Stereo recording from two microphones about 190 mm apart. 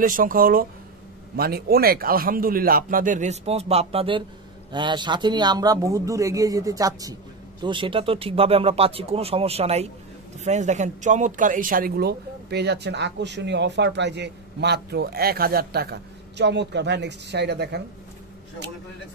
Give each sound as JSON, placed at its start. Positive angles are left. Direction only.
{"t": 0.0, "sound": "a man's voice", "side_deg": -45}